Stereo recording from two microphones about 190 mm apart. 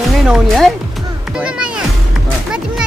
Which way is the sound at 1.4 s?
5° right (ahead or behind).